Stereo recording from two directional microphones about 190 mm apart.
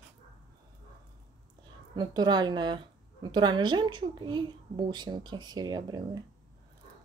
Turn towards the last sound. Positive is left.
turn(degrees=-20)  # may be behind; listen again after turning